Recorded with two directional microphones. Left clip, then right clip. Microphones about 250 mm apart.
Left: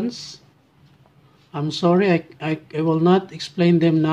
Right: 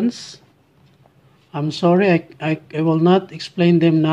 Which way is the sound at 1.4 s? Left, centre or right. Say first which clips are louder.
Right 2 dB; centre.